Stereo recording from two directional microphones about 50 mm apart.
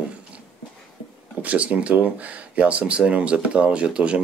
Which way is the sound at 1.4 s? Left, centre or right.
Right.